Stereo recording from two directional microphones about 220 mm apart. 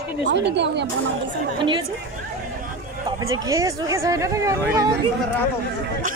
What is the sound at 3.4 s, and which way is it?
Speech, 15° right (ahead or behind).